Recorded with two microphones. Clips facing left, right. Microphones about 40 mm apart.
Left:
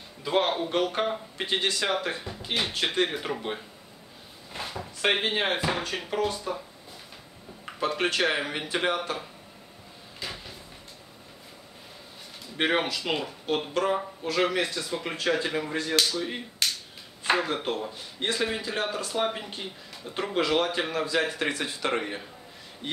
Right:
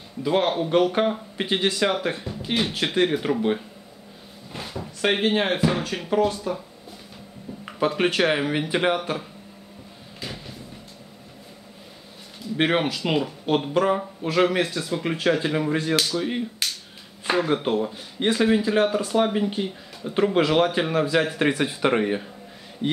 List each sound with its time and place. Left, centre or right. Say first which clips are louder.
0.2 s speech: right 4 dB; centre
7.8 s speech: right 5 dB; centre
10.2 s a sound: right 2 dB; centre
12.5 s speech: right 4 dB; centre
20.4 s speech: right 5 dB; centre